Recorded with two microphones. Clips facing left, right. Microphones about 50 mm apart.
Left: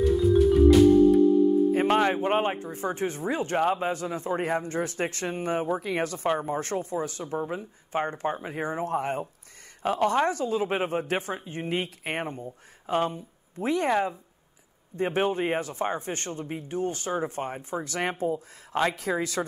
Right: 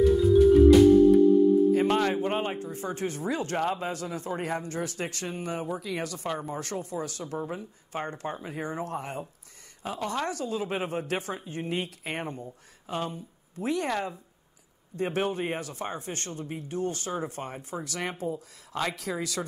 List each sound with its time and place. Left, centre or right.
0.0 s music: centre
1.7 s a man's voice: left
3.8 s speech: left
9.8 s speech: left
10.1 s speech: left
13.8 s speech: left
15.0 s speech: left